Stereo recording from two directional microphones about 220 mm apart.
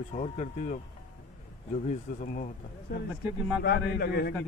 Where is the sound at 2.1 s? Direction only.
40° left (ahead or behind).